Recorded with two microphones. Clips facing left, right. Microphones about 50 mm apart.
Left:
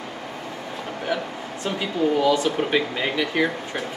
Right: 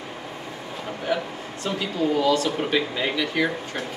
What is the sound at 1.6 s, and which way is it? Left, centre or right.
Speech, centre.